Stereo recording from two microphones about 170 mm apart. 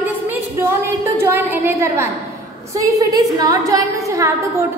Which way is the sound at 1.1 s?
15° right (ahead or behind).